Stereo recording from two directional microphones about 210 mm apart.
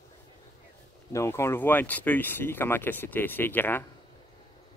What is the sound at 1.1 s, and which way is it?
Speech, 15° left (ahead or behind).